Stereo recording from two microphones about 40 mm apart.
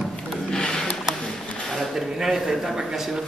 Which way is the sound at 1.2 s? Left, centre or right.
Centre.